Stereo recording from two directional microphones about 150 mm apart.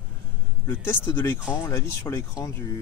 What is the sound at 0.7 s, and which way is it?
Speech, 15° left (ahead or behind).